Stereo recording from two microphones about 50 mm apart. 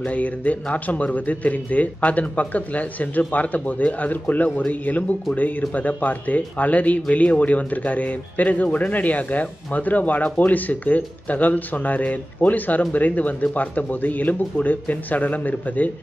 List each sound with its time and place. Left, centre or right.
0.0 s speech: left